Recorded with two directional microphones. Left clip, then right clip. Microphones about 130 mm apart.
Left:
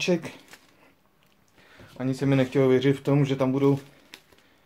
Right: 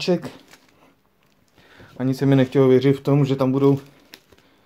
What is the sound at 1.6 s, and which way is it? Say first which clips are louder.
Speech: right 5 dB; 40° right (ahead or behind).